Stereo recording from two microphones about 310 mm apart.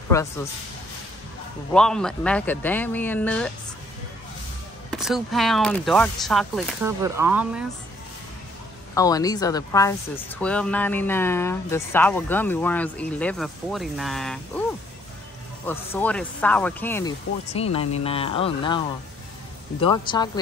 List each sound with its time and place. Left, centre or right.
0.1 s speech: centre
1.7 s speech: centre
4.9 s speech: centre
8.9 s speech: centre
15.6 s speech: centre
17.5 s speech: centre
19.8 s speech: centre